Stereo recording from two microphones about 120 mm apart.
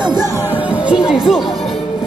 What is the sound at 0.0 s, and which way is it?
Music, 35° right (ahead or behind).